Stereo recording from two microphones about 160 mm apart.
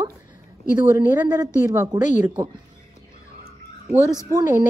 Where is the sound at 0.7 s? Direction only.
15° right (ahead or behind).